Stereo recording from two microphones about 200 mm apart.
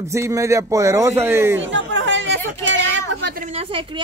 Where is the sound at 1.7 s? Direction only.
65° right (ahead or behind).